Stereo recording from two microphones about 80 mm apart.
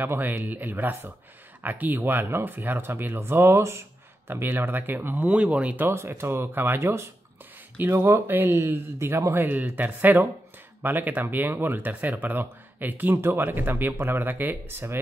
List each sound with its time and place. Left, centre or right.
0.0 s speech: right
5.9 s speech: right